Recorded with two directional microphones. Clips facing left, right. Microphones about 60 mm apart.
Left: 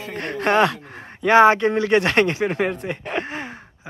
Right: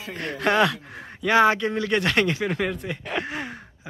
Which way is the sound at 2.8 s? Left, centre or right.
Centre.